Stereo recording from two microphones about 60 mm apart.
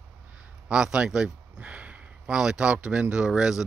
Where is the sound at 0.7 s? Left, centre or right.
Centre.